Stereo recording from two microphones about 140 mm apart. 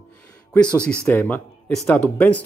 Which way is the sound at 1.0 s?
10° left (ahead or behind).